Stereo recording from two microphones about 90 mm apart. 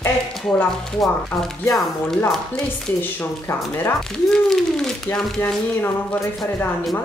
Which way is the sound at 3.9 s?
5° left (ahead or behind).